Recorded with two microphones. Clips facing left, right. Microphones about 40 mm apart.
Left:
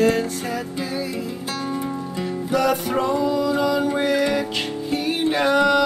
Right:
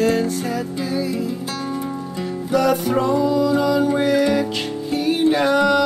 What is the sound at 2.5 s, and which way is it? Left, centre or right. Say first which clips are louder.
Music: right 3 dB; left.